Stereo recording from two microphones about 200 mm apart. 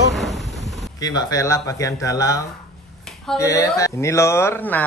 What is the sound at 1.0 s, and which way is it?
Speech, 20° left (ahead or behind).